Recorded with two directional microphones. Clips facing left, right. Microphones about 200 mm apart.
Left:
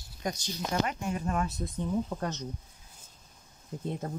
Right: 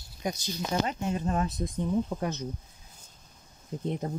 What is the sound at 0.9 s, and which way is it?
Speech, 25° right (ahead or behind).